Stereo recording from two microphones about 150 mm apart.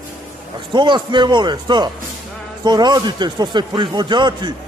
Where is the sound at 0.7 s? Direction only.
30° right (ahead or behind).